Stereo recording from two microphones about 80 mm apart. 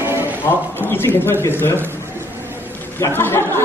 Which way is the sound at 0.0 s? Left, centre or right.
Right.